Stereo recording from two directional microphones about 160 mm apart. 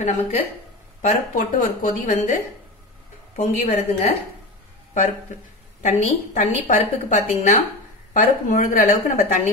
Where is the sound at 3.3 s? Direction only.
50° left (ahead or behind).